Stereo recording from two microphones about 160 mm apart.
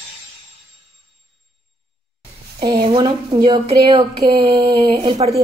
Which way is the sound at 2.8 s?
30° right (ahead or behind).